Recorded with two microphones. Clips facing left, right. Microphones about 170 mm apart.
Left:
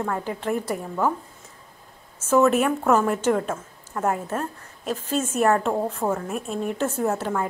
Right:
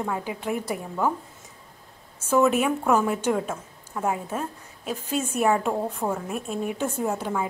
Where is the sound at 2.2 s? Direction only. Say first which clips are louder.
Left 2 dB; centre (ahead or behind).